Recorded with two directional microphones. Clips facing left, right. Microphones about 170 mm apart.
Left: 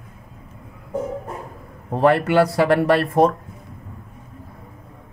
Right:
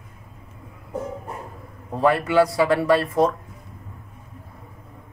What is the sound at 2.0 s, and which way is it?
Speech, 65° left (ahead or behind).